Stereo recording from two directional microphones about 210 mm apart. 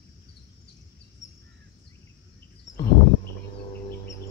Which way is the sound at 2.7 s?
Centre (ahead or behind).